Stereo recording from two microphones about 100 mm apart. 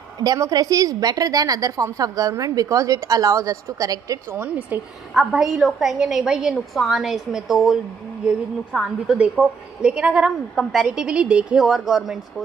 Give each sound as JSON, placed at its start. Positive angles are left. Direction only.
{"t": 0.2, "sound": "a woman's voice", "side_deg": -40}
{"t": 4.4, "sound": "a woman's voice", "side_deg": -15}
{"t": 5.1, "sound": "speech", "side_deg": 0}
{"t": 9.0, "sound": "a woman's voice", "side_deg": -5}
{"t": 10.5, "sound": "speech", "side_deg": 5}